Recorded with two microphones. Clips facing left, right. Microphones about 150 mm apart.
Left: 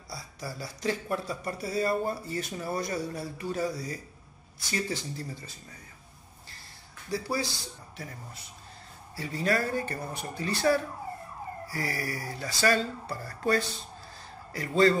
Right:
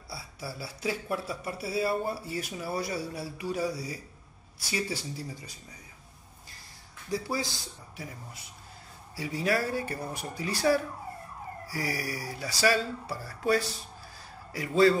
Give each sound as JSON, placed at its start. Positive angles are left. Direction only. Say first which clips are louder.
{"t": 0.1, "sound": "speech", "louder": "left 1 dB", "side_deg": -5}
{"t": 7.1, "sound": "speech", "louder": "left 1 dB", "side_deg": -20}
{"t": 9.1, "sound": "a man's voice", "louder": "even", "side_deg": -10}